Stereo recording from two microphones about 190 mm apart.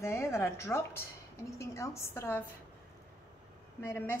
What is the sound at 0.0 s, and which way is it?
A woman's voice, 15° left (ahead or behind).